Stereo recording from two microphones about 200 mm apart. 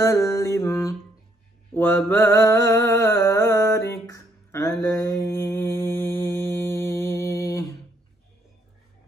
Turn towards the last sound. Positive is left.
turn(degrees=15)  # may be behind; listen again after turning